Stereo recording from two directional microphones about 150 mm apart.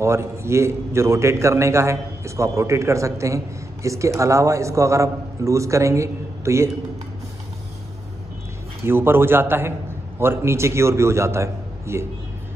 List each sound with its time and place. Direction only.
0.0 s a man's voice: 15° right (ahead or behind)
8.8 s a man's voice: 15° right (ahead or behind)